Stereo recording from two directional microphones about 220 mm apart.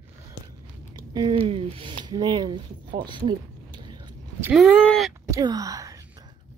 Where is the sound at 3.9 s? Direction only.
10° right (ahead or behind).